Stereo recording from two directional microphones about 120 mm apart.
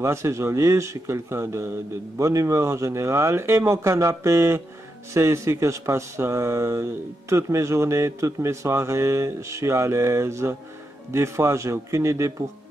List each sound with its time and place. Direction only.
0.0 s speech: 25° right (ahead or behind)